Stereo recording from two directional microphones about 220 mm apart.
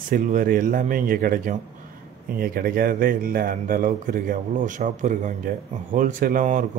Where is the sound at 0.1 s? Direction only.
40° right (ahead or behind).